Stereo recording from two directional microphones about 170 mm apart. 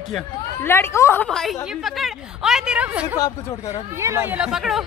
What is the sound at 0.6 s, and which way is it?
Speech, 15° left (ahead or behind).